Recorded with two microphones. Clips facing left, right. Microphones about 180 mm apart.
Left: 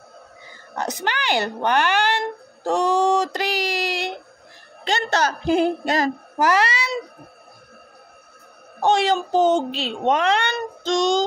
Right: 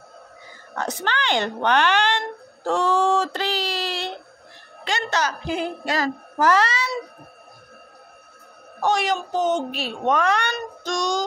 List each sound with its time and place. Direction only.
1.0 s a woman's voice: 10° left (ahead or behind)
2.6 s a sound: 15° left (ahead or behind)
4.8 s speech: 30° left (ahead or behind)
5.9 s a child's voice: 15° left (ahead or behind)
8.8 s speech: 25° left (ahead or behind)